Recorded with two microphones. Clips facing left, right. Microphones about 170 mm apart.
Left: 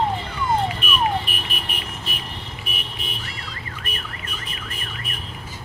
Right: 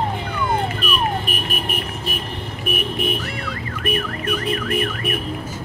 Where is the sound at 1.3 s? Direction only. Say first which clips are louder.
Right 7 dB; 45° right (ahead or behind).